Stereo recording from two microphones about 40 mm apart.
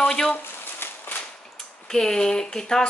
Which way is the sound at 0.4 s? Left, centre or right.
Left.